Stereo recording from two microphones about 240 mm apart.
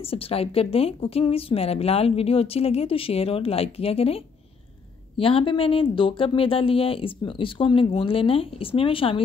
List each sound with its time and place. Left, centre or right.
0.1 s a woman's voice: left